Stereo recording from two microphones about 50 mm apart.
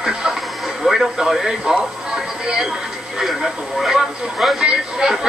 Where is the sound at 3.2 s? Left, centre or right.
Centre.